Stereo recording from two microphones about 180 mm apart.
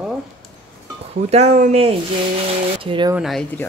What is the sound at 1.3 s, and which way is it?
Speech, 35° right (ahead or behind).